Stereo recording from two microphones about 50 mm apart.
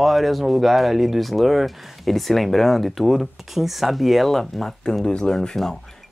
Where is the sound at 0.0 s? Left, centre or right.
Centre.